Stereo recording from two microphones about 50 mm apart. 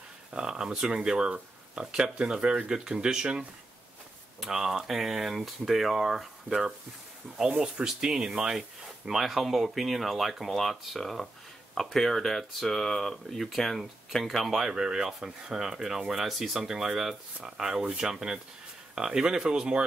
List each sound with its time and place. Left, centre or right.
0.3 s speech: centre